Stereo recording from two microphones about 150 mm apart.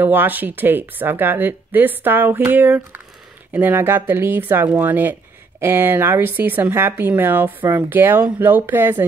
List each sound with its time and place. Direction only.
0.0 s a woman's voice: 15° right (ahead or behind)